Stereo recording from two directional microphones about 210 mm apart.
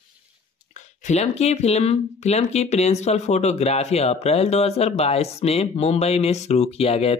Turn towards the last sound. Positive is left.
turn(degrees=30)  # may be behind; listen again after turning